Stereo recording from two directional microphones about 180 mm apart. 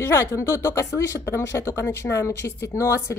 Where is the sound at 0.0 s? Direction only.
15° left (ahead or behind).